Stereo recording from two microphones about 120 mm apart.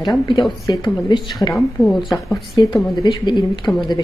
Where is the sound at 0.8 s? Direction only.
40° left (ahead or behind).